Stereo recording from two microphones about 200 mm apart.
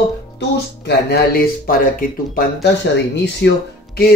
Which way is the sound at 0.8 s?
50° left (ahead or behind).